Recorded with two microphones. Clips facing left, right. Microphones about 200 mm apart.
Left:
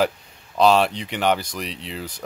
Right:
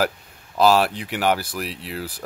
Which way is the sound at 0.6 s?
5° right (ahead or behind).